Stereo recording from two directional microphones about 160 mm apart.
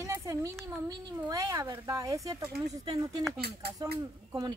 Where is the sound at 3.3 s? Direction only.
80° right.